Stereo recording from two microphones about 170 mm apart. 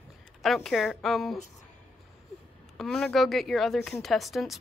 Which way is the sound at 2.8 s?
5° left (ahead or behind).